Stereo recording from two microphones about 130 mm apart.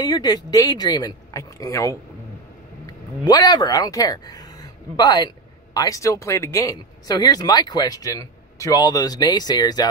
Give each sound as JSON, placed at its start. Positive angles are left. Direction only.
{"t": 0.0, "sound": "speech", "side_deg": 30}